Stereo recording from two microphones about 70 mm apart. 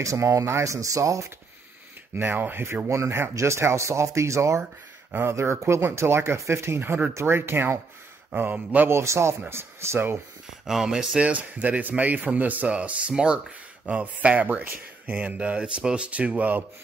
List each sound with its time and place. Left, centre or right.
0.0 s speech: right
2.1 s a man's voice: right
8.9 s speech: right
10.7 s a man's voice: centre